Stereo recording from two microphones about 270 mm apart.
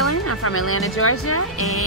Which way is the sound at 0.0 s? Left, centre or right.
Left.